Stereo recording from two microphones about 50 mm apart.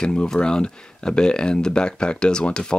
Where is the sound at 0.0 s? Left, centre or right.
Centre.